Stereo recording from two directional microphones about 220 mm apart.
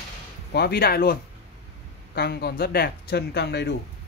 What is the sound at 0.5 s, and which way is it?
Speech, 45° left (ahead or behind).